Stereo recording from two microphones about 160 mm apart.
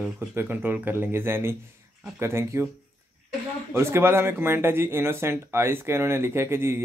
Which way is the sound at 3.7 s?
15° right (ahead or behind).